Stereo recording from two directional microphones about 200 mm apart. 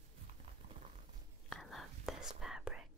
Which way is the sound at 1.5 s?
Centre (ahead or behind).